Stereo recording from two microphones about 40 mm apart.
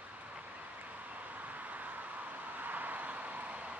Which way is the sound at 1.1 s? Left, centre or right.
Right.